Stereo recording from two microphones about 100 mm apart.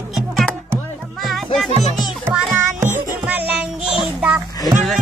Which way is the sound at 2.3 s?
25° right (ahead or behind).